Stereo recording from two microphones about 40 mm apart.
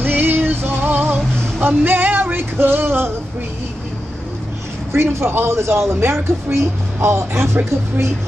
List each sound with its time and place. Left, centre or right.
0.0 s music: right
4.9 s speech: right